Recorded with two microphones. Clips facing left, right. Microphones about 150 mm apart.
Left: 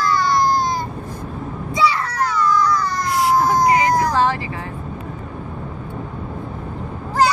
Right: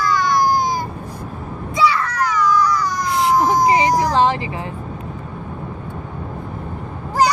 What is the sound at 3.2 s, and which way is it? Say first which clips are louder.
Vehicle: right 1 dB; 15° right (ahead or behind).